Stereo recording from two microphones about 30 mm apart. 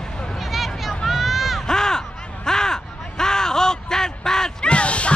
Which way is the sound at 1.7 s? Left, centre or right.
Left.